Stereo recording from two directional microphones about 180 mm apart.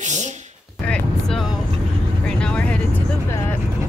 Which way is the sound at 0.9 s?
5° left (ahead or behind).